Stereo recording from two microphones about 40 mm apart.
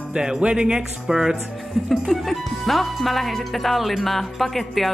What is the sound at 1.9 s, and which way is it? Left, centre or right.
Speech, centre.